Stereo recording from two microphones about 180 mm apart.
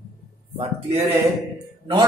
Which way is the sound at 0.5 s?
30° right (ahead or behind).